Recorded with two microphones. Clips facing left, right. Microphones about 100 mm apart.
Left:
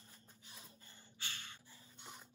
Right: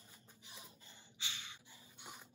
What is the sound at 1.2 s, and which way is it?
Gasp, 15° right (ahead or behind).